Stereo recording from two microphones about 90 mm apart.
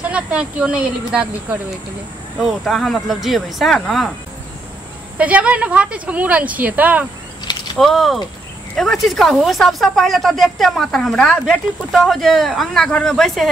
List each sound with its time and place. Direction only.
0.0 s speech: 15° right (ahead or behind)
2.6 s speech: centre (ahead or behind)
5.1 s speech: 15° right (ahead or behind)
7.8 s speech: centre (ahead or behind)